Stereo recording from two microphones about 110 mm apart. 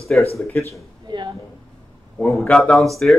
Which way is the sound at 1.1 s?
45° right (ahead or behind).